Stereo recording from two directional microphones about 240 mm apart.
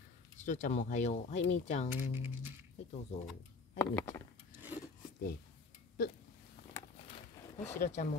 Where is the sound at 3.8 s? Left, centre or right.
Centre.